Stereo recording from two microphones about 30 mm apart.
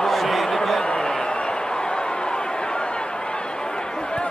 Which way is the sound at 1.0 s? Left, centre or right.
Left.